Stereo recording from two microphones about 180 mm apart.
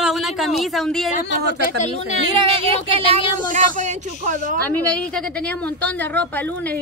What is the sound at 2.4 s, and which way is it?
Speech, 30° right (ahead or behind).